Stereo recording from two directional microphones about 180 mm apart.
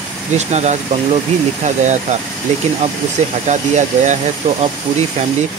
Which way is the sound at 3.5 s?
40° right (ahead or behind).